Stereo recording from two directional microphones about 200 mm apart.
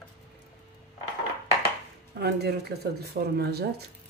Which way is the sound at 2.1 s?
55° right (ahead or behind).